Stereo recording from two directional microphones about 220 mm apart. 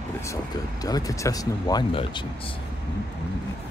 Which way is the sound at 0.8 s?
15° left (ahead or behind).